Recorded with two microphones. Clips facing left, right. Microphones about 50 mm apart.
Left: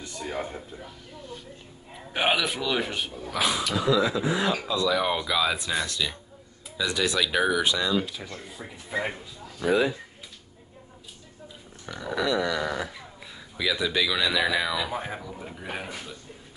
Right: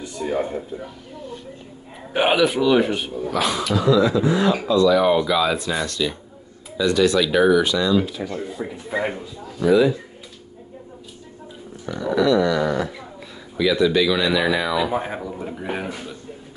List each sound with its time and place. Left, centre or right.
0.0 s a man's voice: centre
2.1 s a man's voice: centre
3.3 s speech: centre
8.2 s a man's voice: centre
9.7 s speech: left
12.0 s speech: centre
14.9 s a man's voice: centre